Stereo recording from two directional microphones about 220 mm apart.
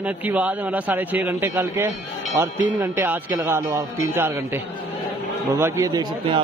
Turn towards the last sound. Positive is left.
turn(degrees=-20)  # may be behind; listen again after turning